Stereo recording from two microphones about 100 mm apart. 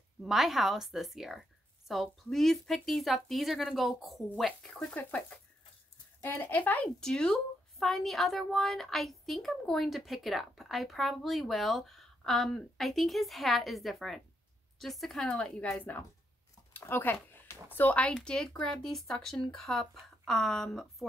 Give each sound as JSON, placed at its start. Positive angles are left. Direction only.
{"t": 0.2, "sound": "a woman's voice", "side_deg": 0}
{"t": 4.7, "sound": "speech", "side_deg": 15}
{"t": 7.0, "sound": "a woman's voice", "side_deg": 5}
{"t": 16.7, "sound": "a sound", "side_deg": 20}
{"t": 17.7, "sound": "a woman's voice", "side_deg": 15}